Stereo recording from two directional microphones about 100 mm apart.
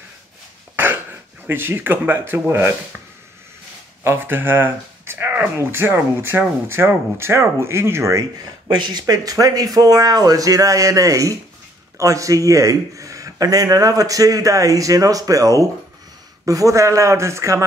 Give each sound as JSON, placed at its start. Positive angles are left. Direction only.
{"t": 0.7, "sound": "throat clearing", "side_deg": -20}
{"t": 1.5, "sound": "speech", "side_deg": -20}
{"t": 4.0, "sound": "speech", "side_deg": -25}